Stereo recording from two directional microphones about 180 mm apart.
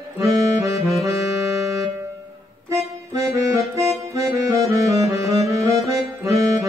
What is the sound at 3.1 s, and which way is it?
Music, 15° right (ahead or behind).